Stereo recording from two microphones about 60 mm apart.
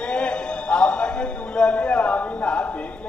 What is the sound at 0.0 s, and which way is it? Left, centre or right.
Music, centre.